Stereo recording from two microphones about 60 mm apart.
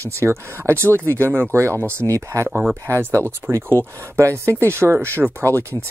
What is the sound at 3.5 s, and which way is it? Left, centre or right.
Speech, right.